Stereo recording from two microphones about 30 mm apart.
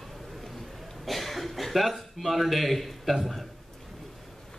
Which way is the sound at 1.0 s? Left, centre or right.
Centre.